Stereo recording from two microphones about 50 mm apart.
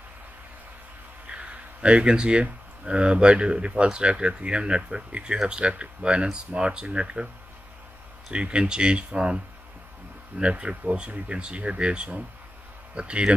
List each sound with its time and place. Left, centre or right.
1.3 s speech: right
8.3 s speech: right